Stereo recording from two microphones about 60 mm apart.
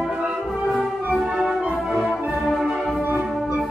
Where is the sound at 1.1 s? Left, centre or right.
Centre.